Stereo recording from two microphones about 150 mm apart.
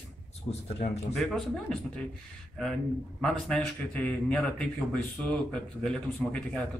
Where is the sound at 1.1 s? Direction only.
Centre (ahead or behind).